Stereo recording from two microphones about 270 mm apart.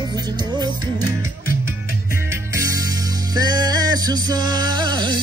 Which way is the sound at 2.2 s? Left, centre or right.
Centre.